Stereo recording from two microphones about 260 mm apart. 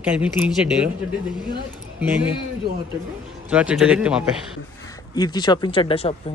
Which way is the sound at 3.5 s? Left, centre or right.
Centre.